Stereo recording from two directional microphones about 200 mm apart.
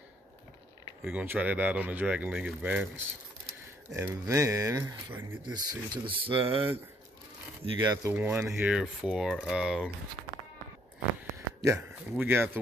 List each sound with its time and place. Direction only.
1.0 s speech: 10° right (ahead or behind)
3.9 s speech: 15° right (ahead or behind)
7.7 s speech: 20° right (ahead or behind); by 9.8 s 5° right (ahead or behind)
11.6 s speech: 15° right (ahead or behind)